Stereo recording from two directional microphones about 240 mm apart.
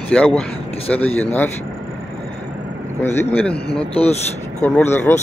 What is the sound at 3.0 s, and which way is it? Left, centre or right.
Speech, centre.